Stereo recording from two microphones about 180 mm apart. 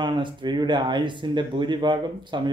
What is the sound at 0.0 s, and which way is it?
Speech, 25° right (ahead or behind).